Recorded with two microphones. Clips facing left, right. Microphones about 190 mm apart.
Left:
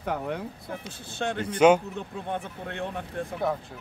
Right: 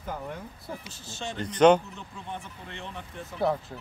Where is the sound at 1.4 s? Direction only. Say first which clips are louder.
Even; 10° left (ahead or behind).